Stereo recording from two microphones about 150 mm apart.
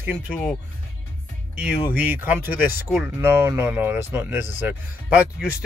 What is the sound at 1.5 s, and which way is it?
Speech, 10° right (ahead or behind).